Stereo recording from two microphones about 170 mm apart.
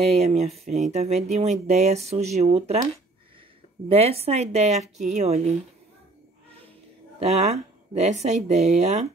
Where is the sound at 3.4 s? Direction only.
35° right (ahead or behind).